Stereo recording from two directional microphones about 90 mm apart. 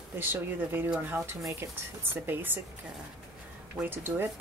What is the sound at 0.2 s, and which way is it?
Speech, 25° right (ahead or behind).